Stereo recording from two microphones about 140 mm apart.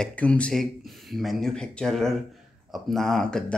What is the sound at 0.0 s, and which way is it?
Speech, 10° left (ahead or behind).